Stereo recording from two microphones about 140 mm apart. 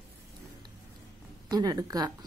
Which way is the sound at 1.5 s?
30° right (ahead or behind).